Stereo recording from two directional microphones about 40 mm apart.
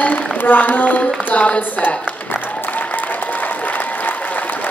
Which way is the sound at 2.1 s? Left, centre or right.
Left.